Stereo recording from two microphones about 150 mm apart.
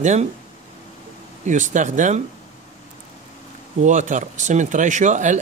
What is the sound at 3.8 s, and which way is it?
Speech, 55° right (ahead or behind).